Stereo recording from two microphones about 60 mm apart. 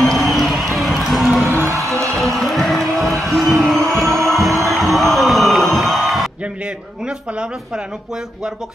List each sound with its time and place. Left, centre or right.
0.0 s music: centre
1.5 s music: right
2.1 s music: centre
4.6 s a sound: centre